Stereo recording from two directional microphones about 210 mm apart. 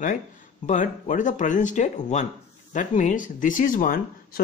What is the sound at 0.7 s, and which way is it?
Speech, 35° left (ahead or behind).